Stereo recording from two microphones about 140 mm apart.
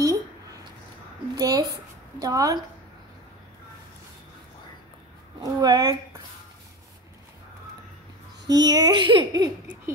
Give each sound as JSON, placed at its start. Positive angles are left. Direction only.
{"t": 0.0, "sound": "a sound", "side_deg": -25}
{"t": 1.3, "sound": "speech", "side_deg": -25}
{"t": 5.4, "sound": "speech", "side_deg": -25}
{"t": 8.5, "sound": "speech", "side_deg": -30}